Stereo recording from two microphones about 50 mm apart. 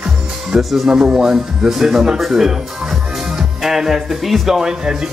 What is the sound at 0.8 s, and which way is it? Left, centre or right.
Speech, centre.